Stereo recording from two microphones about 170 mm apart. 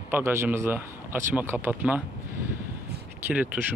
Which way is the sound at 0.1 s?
15° right (ahead or behind).